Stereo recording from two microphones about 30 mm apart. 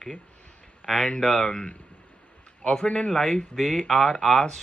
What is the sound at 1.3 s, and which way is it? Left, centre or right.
Speech, left.